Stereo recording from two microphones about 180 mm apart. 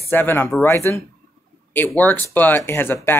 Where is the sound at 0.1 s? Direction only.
10° left (ahead or behind).